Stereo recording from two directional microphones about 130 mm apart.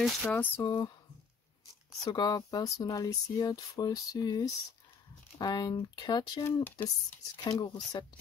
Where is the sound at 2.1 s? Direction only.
30° left (ahead or behind).